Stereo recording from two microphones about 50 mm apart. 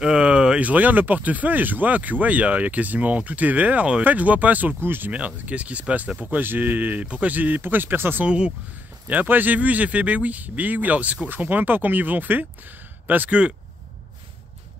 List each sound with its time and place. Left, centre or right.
0.0 s a sound: centre
0.7 s speech: right
5.1 s speech: right
6.4 s speech: right
8.3 s speech: centre
9.0 s speech: right